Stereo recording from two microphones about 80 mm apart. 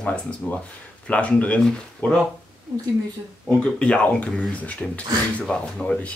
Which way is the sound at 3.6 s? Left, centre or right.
Centre.